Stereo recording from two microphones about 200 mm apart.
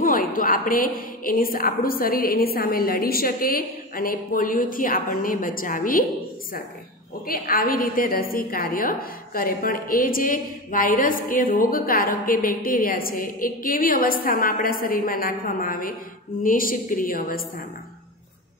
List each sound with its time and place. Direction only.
0.0 s a woman's voice: 45° left (ahead or behind)
7.2 s a woman's voice: 45° left (ahead or behind)